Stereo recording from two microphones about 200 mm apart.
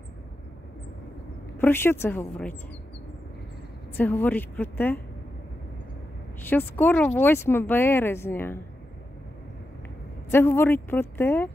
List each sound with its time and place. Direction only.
1.6 s speech: 10° left (ahead or behind)
3.9 s speech: 10° left (ahead or behind)
6.4 s speech: 10° left (ahead or behind)
10.3 s speech: 10° left (ahead or behind)